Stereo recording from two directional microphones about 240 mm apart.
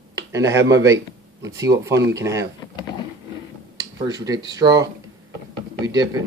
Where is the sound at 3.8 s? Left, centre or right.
Centre.